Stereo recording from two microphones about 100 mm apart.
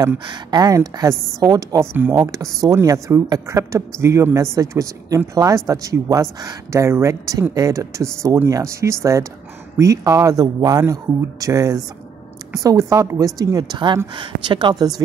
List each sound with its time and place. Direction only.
0.2 s speech: 50° right (ahead or behind)
2.0 s speech: 25° right (ahead or behind); by 15.0 s 45° right (ahead or behind)